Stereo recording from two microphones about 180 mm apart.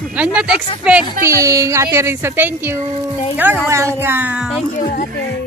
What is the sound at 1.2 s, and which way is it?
A woman's voice, 15° right (ahead or behind).